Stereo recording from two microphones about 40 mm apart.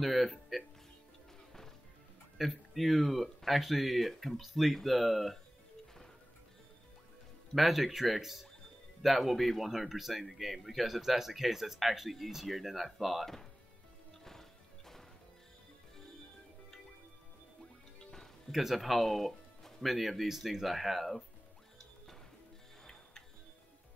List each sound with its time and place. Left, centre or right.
0.0 s speech: centre
2.3 s speech: centre
7.5 s speech: centre
18.5 s speech: centre